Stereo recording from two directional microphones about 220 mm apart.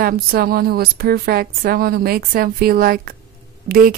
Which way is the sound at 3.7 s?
40° right (ahead or behind).